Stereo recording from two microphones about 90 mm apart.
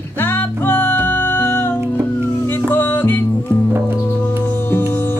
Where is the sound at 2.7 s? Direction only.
25° left (ahead or behind).